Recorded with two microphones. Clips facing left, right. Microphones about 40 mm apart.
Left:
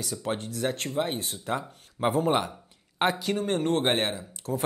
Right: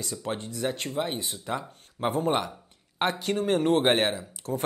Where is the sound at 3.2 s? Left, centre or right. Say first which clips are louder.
Right 2 dB; centre.